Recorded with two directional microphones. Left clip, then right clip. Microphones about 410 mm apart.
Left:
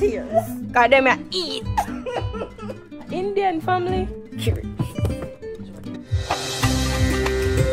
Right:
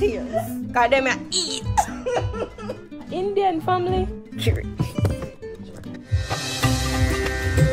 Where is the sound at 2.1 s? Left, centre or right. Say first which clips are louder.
Right 3 dB; right.